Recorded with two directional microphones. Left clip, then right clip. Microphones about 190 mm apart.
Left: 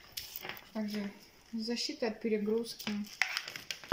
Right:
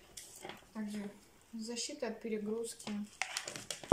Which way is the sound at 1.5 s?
20° left (ahead or behind).